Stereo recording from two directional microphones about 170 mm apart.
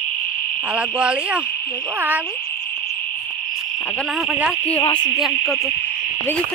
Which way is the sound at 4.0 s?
Centre (ahead or behind).